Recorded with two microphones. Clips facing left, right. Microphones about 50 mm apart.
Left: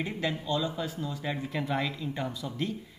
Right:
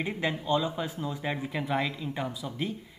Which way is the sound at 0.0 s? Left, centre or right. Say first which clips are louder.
Right 1 dB; centre.